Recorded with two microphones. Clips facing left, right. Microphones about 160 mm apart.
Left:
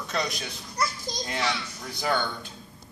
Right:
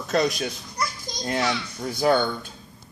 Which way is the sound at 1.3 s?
45° right (ahead or behind).